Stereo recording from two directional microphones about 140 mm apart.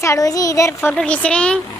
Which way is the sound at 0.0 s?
25° left (ahead or behind).